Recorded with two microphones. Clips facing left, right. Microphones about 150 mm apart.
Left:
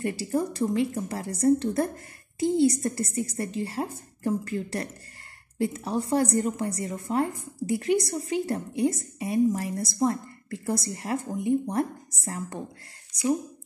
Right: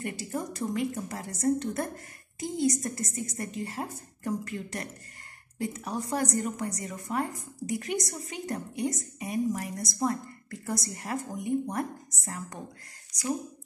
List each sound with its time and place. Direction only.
0.0 s a woman's voice: 30° left (ahead or behind)